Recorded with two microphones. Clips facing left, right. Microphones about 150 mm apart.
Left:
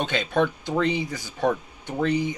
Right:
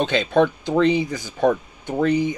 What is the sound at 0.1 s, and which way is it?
Speech, 5° left (ahead or behind).